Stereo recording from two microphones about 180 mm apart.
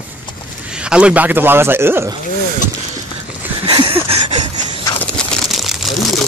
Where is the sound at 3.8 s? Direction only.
30° right (ahead or behind).